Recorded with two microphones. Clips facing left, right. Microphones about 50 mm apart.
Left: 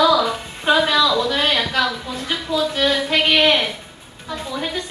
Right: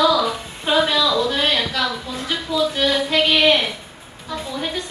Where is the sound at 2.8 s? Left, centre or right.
Centre.